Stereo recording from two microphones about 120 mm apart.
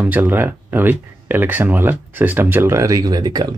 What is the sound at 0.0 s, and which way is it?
Speech, 15° right (ahead or behind).